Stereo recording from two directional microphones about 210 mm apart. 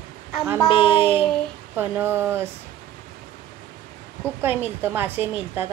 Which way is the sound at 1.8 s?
10° right (ahead or behind).